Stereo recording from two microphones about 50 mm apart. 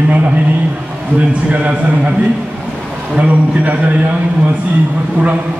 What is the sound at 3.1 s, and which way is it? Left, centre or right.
Speech, right.